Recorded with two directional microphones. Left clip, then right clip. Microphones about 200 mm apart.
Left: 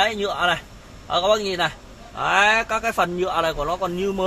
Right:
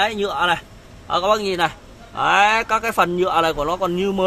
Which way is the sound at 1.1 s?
35° right (ahead or behind).